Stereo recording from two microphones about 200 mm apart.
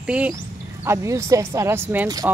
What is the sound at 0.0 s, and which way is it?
A woman's voice, 5° right (ahead or behind).